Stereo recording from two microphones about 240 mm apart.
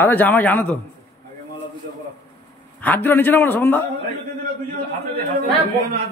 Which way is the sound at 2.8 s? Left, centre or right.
Centre.